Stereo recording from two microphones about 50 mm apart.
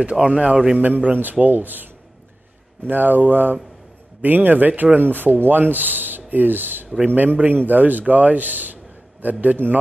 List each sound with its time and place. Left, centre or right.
0.0 s a man's voice: right
0.7 s speech: right
2.9 s speech: right